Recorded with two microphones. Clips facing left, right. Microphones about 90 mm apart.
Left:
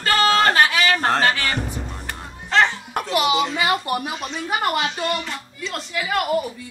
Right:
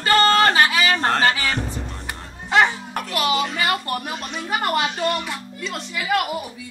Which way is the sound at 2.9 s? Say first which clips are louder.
Left 3 dB; 20° left (ahead or behind).